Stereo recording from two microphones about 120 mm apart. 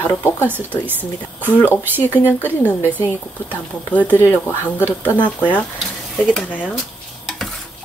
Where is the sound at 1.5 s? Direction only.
15° left (ahead or behind).